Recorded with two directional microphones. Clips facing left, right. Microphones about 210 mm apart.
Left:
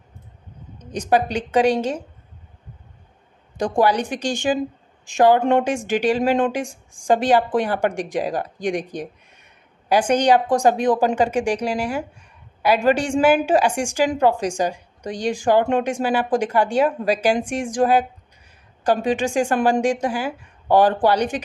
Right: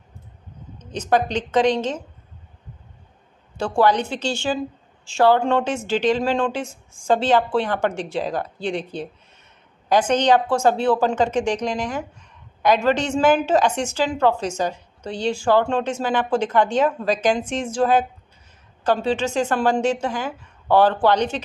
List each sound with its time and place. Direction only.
0.7 s a woman's voice: 15° left (ahead or behind)
3.5 s a woman's voice: 15° left (ahead or behind)